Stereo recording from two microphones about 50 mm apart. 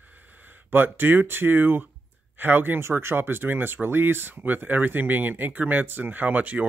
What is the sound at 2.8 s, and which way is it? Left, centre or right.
Speech, right.